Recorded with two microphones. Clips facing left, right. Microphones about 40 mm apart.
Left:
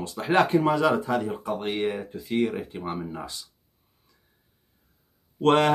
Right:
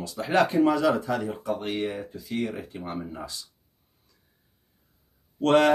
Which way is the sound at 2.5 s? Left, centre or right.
Left.